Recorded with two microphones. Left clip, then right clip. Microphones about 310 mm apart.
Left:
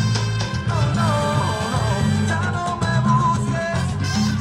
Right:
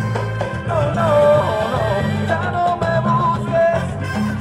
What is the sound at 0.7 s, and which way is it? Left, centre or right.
Music, centre.